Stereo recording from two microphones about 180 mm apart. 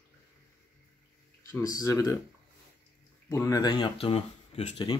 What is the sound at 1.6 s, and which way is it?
Speech, 20° left (ahead or behind).